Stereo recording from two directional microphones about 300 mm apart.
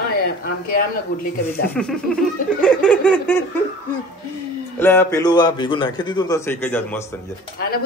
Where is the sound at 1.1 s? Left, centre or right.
Left.